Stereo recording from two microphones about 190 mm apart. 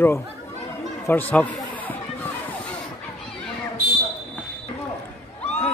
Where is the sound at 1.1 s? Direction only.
10° left (ahead or behind).